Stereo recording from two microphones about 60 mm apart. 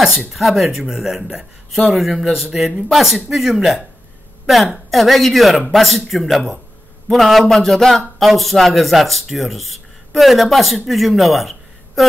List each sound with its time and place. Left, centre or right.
0.0 s a man's voice: centre